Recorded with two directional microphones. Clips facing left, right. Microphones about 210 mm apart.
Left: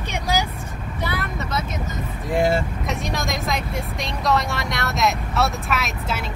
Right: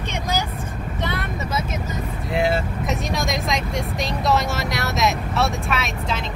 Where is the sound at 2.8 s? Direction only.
Centre (ahead or behind).